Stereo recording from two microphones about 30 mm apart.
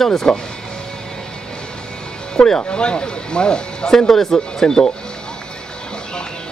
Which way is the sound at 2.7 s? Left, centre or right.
Left.